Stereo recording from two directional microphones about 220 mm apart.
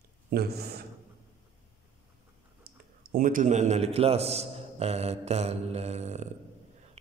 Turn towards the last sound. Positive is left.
turn(degrees=-30)  # may be behind; listen again after turning